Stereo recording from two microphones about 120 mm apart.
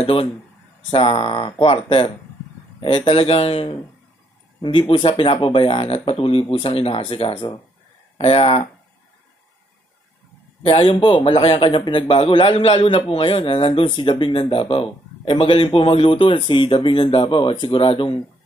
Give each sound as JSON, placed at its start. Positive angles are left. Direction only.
{"t": 0.0, "sound": "a man's voice", "side_deg": 55}
{"t": 10.9, "sound": "a man's voice", "side_deg": 45}